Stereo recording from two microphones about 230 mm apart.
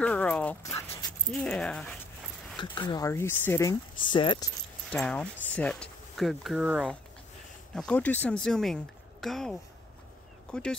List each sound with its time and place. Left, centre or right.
0.0 s speech: centre
2.6 s speech: centre
4.9 s speech: centre